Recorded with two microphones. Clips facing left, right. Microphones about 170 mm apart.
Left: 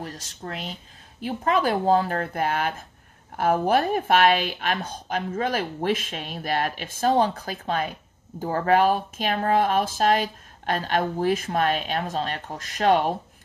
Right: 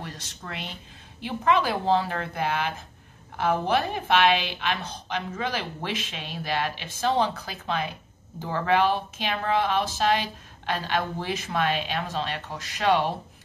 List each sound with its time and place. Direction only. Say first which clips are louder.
0.0 s speech: left 4 dB; 40° left (ahead or behind)